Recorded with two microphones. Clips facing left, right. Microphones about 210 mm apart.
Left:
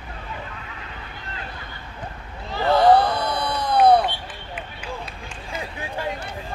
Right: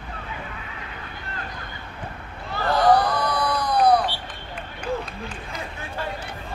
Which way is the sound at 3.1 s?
25° left (ahead or behind).